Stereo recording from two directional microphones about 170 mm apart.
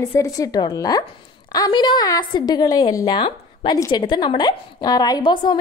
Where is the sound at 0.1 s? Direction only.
20° left (ahead or behind).